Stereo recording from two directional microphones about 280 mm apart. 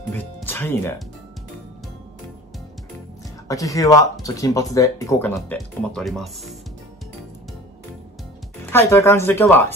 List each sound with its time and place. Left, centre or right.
0.1 s speech: centre
3.4 s speech: centre
8.7 s speech: centre